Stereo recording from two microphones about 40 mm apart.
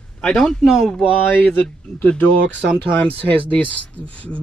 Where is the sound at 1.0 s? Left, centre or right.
Right.